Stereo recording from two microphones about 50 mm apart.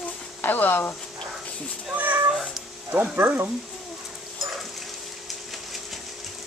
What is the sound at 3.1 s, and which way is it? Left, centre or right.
Speech, right.